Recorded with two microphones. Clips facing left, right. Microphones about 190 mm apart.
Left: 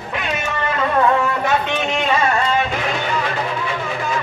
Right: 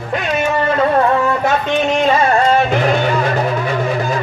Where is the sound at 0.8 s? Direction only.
40° right (ahead or behind).